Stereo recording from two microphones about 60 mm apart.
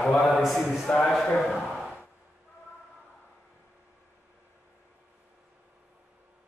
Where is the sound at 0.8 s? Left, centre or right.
Centre.